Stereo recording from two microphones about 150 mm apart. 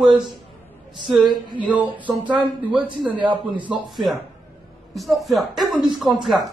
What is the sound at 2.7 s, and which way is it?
Speech, 35° right (ahead or behind).